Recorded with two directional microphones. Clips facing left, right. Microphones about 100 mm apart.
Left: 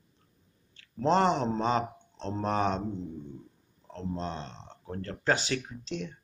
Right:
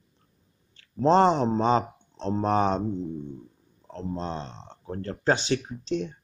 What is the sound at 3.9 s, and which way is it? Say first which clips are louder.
Speech: right 3 dB; 25° right (ahead or behind).